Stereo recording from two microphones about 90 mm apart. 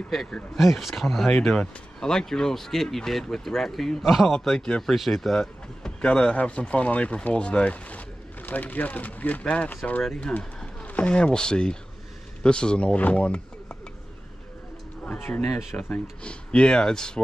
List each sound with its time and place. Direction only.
0.1 s speech: centre (ahead or behind)
15.1 s speech: 25° left (ahead or behind)
15.4 s speech: 5° left (ahead or behind)
15.8 s speech: 15° left (ahead or behind)